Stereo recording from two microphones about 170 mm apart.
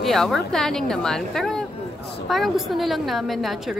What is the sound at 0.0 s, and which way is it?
A woman's voice, centre (ahead or behind).